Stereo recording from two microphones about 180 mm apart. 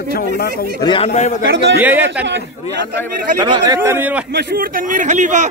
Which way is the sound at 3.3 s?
25° right (ahead or behind).